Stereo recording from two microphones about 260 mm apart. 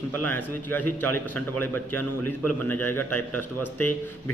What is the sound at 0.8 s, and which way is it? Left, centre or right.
A man's voice, left.